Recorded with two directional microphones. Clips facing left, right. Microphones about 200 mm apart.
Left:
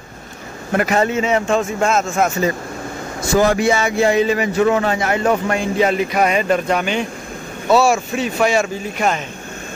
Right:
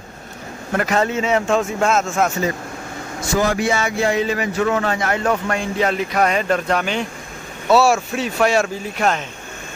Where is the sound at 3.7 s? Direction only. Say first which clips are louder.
Left 3 dB; 15° left (ahead or behind).